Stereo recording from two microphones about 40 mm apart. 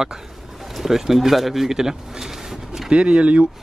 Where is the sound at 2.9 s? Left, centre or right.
Right.